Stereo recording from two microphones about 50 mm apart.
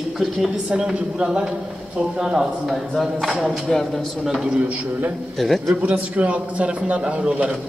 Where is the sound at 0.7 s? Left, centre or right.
Centre.